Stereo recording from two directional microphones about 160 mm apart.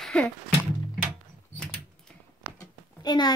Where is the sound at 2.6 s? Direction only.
25° left (ahead or behind).